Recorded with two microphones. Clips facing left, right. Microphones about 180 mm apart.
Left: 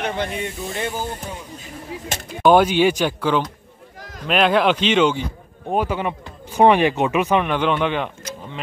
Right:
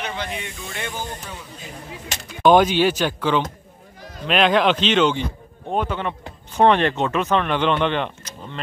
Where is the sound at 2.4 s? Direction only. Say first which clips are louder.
Left 1 dB; 10° left (ahead or behind).